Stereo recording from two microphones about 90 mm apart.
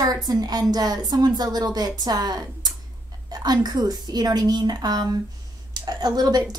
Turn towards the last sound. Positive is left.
turn(degrees=-45)  # may be behind; listen again after turning